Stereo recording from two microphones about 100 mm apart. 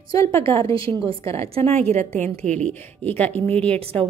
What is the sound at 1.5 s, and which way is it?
Speech, 90° right.